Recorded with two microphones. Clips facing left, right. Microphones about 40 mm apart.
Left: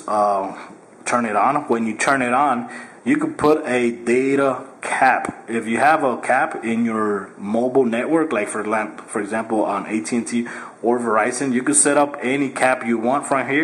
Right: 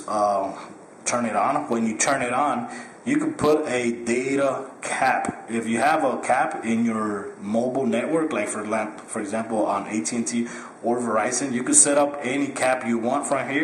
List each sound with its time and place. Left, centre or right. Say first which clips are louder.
0.0 s speech: left 4 dB; centre